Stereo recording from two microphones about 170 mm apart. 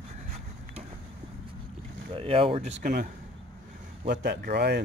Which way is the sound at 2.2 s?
35° right (ahead or behind).